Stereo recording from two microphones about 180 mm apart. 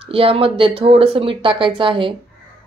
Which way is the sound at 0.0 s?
30° right (ahead or behind).